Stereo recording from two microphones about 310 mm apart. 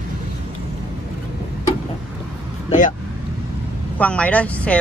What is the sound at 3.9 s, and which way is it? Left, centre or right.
Speech, centre.